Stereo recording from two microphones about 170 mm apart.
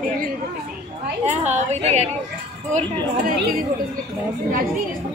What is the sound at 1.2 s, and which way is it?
Speech, 40° right (ahead or behind).